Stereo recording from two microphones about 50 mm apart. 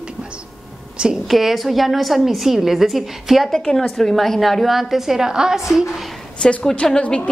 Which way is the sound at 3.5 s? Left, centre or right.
Centre.